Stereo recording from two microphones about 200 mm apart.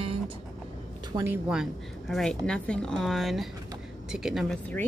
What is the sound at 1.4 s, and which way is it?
Speech, 5° right (ahead or behind).